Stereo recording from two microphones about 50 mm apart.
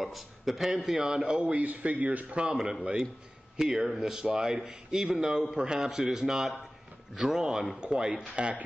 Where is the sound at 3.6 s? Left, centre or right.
Centre.